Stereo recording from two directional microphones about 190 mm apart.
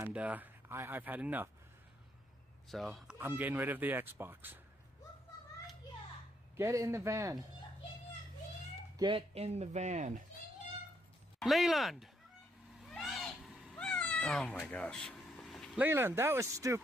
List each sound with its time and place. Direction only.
0.0 s speech: 10° right (ahead or behind)
2.7 s speech: centre (ahead or behind)
6.5 s speech: 15° right (ahead or behind)
8.9 s speech: 25° right (ahead or behind)
11.3 s speech: centre (ahead or behind)
12.8 s cat: centre (ahead or behind)
15.8 s speech: 10° right (ahead or behind)